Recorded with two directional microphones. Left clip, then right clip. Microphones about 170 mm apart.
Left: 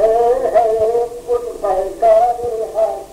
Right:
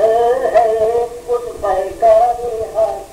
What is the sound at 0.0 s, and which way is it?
Music, 35° right (ahead or behind).